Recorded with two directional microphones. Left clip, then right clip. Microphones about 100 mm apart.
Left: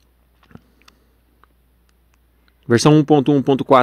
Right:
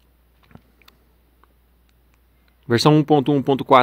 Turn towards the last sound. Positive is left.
turn(degrees=30)  # may be behind; listen again after turning